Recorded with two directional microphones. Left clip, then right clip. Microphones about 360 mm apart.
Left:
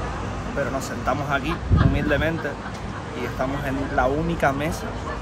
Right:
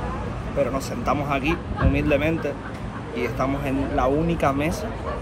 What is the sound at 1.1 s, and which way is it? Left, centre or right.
Speech, centre.